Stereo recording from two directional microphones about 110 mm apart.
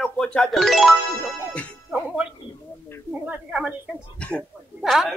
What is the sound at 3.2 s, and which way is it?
Speech, 10° right (ahead or behind).